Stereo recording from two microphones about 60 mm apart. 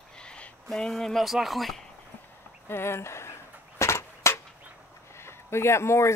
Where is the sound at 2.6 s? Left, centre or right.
Left.